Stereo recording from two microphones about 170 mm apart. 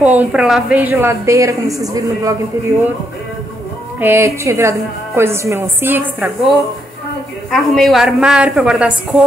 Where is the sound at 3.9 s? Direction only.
15° right (ahead or behind).